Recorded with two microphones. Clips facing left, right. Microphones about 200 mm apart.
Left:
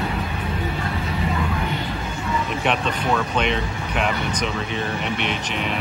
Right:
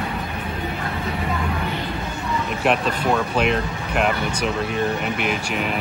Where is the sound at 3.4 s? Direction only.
Centre (ahead or behind).